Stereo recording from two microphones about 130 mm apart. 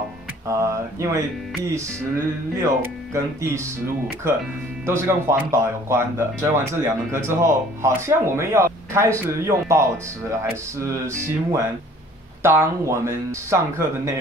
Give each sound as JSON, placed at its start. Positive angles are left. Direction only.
{"t": 0.5, "sound": "speech", "side_deg": -25}
{"t": 4.8, "sound": "speech", "side_deg": -20}